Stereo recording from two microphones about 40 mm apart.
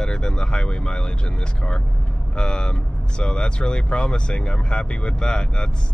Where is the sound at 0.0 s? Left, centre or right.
Left.